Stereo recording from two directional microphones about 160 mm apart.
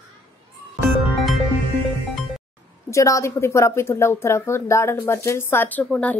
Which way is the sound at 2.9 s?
20° left (ahead or behind).